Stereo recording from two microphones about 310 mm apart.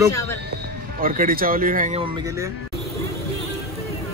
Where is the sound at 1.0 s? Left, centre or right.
Right; by 2.5 s centre.